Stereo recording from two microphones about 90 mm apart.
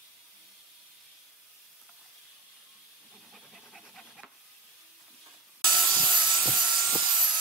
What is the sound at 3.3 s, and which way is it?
Pant, centre (ahead or behind).